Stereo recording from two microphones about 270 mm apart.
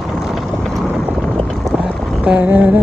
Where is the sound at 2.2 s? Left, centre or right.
Centre.